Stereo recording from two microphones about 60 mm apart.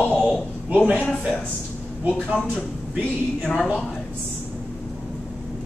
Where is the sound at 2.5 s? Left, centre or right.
Centre.